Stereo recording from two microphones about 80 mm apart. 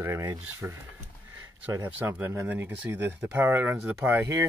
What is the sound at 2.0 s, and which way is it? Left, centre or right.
Speech, right.